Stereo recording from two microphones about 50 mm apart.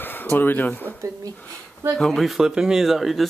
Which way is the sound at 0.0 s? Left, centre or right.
Left.